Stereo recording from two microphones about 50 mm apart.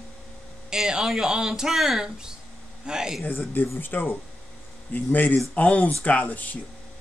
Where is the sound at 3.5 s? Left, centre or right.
Left.